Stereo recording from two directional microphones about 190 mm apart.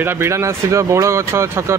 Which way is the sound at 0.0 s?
10° right (ahead or behind).